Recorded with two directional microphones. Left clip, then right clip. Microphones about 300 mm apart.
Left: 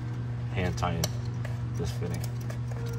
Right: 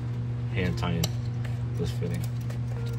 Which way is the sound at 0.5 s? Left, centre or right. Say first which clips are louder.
Left 1 dB; left.